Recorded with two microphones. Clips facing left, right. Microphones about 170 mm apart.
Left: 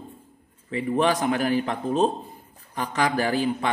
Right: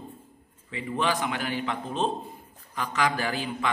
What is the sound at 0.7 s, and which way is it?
A man's voice, 40° left (ahead or behind).